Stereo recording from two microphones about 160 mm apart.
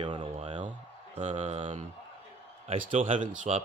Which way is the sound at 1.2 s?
50° right (ahead or behind).